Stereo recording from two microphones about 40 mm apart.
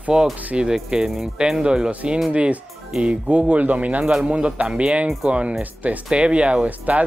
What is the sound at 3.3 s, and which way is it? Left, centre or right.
Speech, right.